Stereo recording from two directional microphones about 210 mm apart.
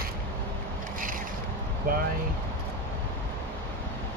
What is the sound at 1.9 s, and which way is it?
Speech, 40° right (ahead or behind).